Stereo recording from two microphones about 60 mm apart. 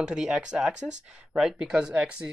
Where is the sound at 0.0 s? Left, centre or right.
Centre.